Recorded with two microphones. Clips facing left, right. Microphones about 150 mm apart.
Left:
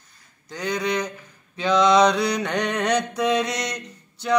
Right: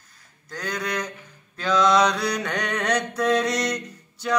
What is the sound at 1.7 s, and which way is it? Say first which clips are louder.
Mantra: left 2 dB; 5° right (ahead or behind).